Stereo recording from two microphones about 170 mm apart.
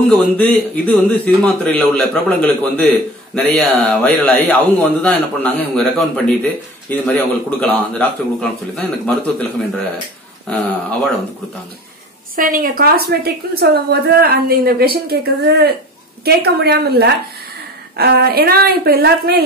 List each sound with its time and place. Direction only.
0.1 s a man's voice: 10° left (ahead or behind)
12.4 s a woman's voice: 55° right (ahead or behind)